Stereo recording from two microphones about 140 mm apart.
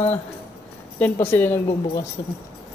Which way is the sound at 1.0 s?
15° left (ahead or behind).